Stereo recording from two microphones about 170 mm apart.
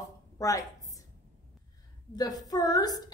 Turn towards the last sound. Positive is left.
turn(degrees=25)  # may be behind; listen again after turning